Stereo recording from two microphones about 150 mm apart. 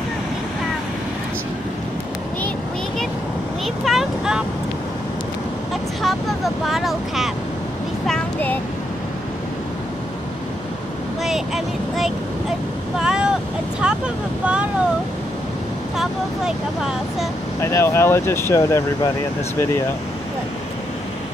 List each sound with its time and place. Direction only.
3.6 s vehicle: centre (ahead or behind)
6.0 s vehicle: centre (ahead or behind)
8.1 s a sound: 10° left (ahead or behind)
11.2 s speech: centre (ahead or behind)
13.0 s vehicle: 5° right (ahead or behind)
13.7 s speech: 5° right (ahead or behind)
16.0 s speech: 5° right (ahead or behind)
17.6 s speech: 20° left (ahead or behind)